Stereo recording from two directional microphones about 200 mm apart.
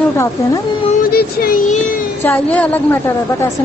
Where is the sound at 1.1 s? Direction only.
50° left (ahead or behind).